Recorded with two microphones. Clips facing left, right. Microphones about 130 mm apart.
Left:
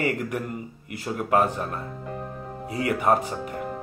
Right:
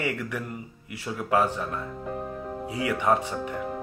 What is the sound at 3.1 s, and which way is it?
Speech, 45° left (ahead or behind).